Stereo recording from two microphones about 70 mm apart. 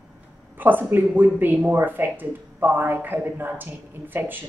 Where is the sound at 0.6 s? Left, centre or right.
Right.